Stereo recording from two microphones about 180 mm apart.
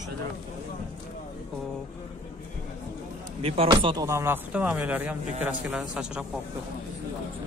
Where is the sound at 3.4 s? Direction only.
30° right (ahead or behind).